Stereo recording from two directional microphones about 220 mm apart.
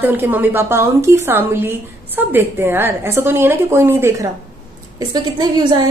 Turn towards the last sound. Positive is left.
turn(degrees=-20)  # may be behind; listen again after turning